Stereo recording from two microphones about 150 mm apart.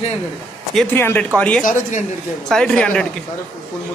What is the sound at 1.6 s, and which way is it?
Speech, 60° left (ahead or behind).